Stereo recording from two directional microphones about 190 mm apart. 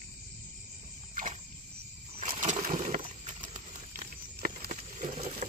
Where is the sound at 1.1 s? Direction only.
40° right (ahead or behind).